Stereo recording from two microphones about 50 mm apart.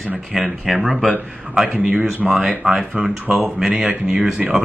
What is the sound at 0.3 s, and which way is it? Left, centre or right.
Speech, centre.